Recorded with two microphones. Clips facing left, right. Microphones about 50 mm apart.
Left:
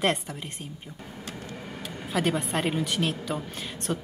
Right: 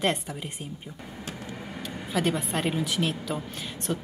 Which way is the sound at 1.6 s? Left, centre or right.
Centre.